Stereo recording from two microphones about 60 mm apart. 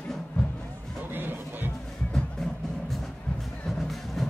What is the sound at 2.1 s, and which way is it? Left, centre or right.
Music, centre.